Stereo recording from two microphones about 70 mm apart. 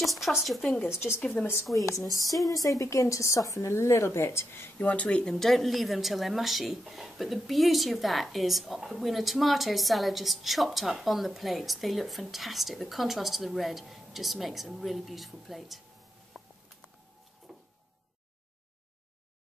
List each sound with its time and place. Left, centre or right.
0.0 s speech: centre
1.2 s a woman's voice: left
1.8 s a woman's voice: left
2.8 s a woman's voice: left; by 5.3 s centre
5.3 s a woman's voice: centre
17.5 s a sound: centre